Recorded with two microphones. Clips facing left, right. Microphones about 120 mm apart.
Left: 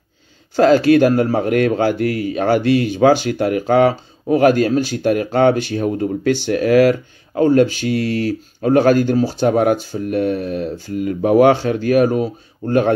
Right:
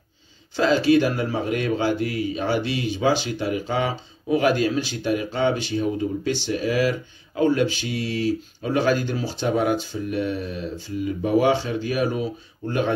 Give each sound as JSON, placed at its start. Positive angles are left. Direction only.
{"t": 0.6, "sound": "speech", "side_deg": 55}
{"t": 7.4, "sound": "speech", "side_deg": 45}